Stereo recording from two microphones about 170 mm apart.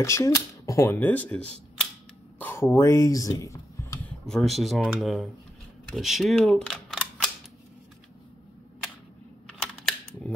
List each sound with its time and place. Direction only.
0.0 s speech: 20° left (ahead or behind)
4.3 s speech: centre (ahead or behind)